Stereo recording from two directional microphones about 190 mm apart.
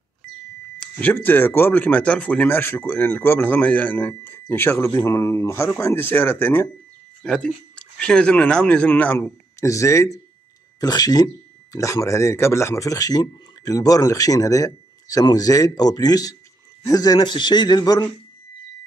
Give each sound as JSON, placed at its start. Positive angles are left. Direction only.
{"t": 0.7, "sound": "a man's voice", "side_deg": 10}